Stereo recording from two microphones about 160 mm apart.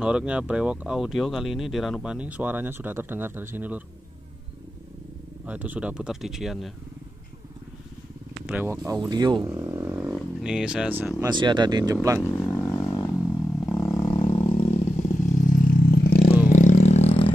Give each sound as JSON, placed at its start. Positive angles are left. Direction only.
{"t": 0.0, "sound": "speech", "side_deg": -5}
{"t": 5.4, "sound": "speech", "side_deg": -10}
{"t": 8.5, "sound": "speech", "side_deg": -10}
{"t": 8.8, "sound": "speech", "side_deg": -25}
{"t": 11.2, "sound": "speech", "side_deg": -30}
{"t": 12.2, "sound": "wild animals", "side_deg": 10}
{"t": 13.8, "sound": "roar", "side_deg": 25}
{"t": 15.0, "sound": "vehicle", "side_deg": 50}
{"t": 16.4, "sound": "vehicle", "side_deg": 50}